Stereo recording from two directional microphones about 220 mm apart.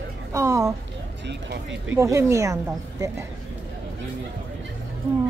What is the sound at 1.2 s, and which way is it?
Speech, 50° right (ahead or behind).